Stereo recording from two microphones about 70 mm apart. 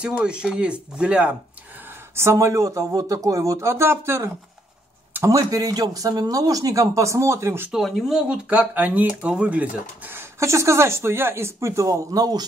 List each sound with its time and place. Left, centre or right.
0.0 s speech: centre
2.1 s speech: right
2.9 s speech: right
5.2 s speech: right
7.7 s speech: centre
8.5 s speech: right
10.1 s speech: right
11.9 s speech: right